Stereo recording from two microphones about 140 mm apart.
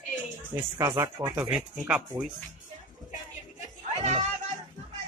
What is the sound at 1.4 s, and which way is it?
Speech, 5° right (ahead or behind).